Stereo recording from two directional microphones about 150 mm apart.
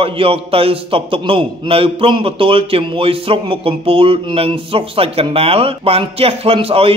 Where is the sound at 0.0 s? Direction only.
40° right (ahead or behind).